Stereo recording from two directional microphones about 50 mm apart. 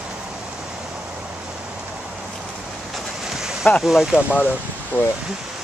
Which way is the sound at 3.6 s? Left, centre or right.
Left.